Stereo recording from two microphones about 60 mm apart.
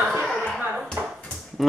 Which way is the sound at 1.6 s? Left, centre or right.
Centre.